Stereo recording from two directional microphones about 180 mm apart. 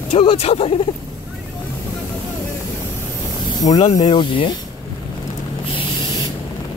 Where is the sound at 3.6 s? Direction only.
20° left (ahead or behind).